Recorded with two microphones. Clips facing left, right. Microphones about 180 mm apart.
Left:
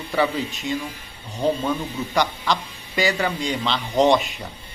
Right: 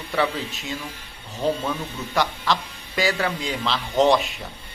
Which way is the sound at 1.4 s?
10° left (ahead or behind).